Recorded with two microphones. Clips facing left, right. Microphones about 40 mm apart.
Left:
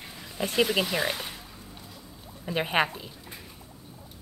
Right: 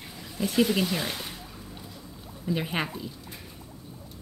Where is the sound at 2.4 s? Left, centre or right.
Left.